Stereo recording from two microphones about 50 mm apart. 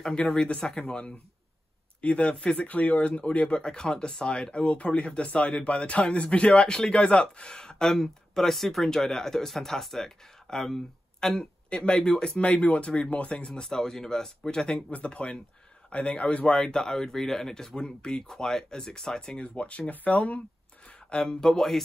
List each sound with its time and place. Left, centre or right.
0.0 s speech: left
13.5 s speech: centre; by 20.4 s left
21.1 s speech: centre